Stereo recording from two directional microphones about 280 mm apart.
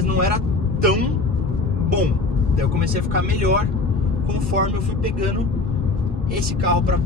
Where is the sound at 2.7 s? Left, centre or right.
Right.